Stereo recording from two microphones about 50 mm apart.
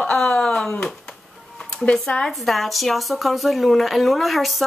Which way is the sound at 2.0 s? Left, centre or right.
Centre.